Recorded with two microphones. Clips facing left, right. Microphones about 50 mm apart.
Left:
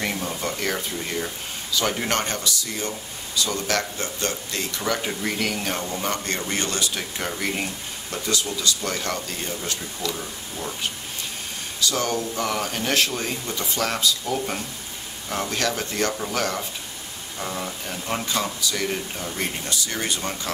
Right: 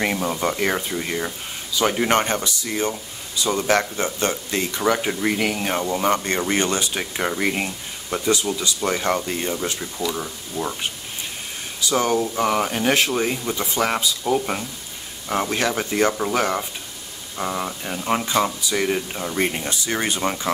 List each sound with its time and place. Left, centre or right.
0.0 s speech: right
11.8 s speech: centre